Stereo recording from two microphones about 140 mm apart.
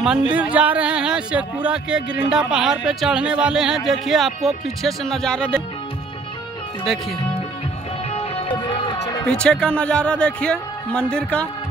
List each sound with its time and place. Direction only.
0.3 s speech: 10° right (ahead or behind); by 5.6 s 5° left (ahead or behind)
8.1 s music: 45° left (ahead or behind)
9.2 s a man's voice: 5° left (ahead or behind)